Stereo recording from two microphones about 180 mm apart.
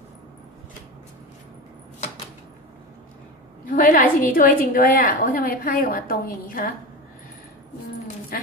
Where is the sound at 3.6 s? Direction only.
50° left (ahead or behind).